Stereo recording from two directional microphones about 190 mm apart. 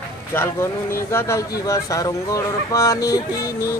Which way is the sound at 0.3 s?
10° left (ahead or behind).